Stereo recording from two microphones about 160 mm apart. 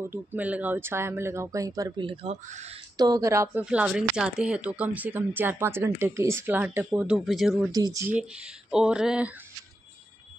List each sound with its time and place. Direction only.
0.1 s speech: 10° right (ahead or behind)
3.6 s speech: 5° right (ahead or behind)
7.7 s speech: 25° right (ahead or behind)
8.1 s speech: 5° right (ahead or behind)